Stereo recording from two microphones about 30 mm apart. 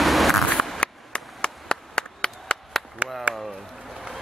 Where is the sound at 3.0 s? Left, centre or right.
Right.